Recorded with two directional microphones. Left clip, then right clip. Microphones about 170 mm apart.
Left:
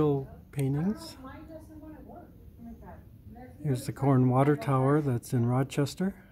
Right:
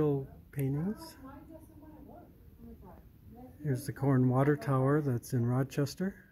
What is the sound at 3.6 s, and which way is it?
Speech, 5° left (ahead or behind).